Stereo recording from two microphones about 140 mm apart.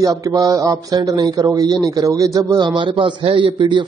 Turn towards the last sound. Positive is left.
turn(degrees=-35)  # may be behind; listen again after turning